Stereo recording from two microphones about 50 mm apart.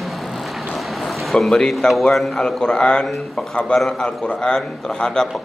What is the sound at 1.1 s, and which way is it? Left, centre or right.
A man's voice, centre.